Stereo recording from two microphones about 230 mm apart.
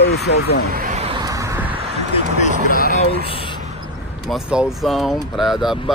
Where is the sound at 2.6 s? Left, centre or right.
Left.